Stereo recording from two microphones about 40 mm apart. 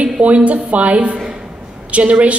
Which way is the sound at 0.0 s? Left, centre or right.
Right.